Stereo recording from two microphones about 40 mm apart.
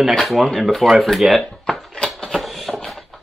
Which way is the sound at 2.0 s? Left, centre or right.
Centre.